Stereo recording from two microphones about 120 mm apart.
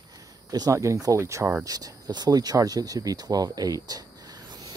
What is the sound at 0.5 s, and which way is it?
Speech, 30° right (ahead or behind).